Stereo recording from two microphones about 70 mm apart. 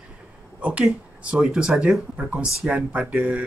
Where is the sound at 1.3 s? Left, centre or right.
Centre.